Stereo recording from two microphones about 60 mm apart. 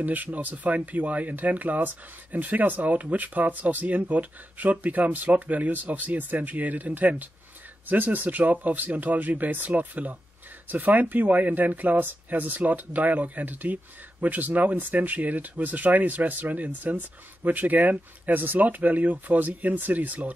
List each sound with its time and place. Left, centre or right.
0.0 s speech: right